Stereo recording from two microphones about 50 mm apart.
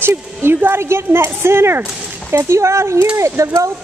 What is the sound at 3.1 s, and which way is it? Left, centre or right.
Speech, right.